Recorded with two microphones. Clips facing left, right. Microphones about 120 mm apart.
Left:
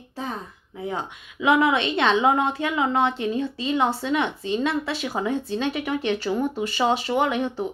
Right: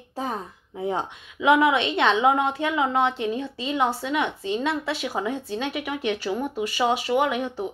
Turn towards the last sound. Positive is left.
turn(degrees=-5)  # may be behind; listen again after turning